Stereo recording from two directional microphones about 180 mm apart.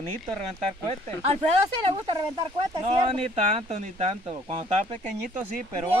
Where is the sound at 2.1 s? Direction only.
25° right (ahead or behind).